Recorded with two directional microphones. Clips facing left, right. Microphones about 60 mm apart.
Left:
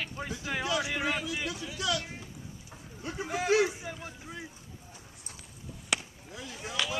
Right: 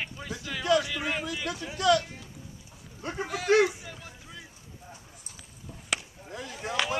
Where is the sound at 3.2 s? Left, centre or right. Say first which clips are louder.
Left 2 dB; centre.